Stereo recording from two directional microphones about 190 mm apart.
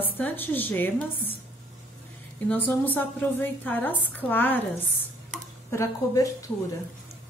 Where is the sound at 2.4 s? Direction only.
10° left (ahead or behind).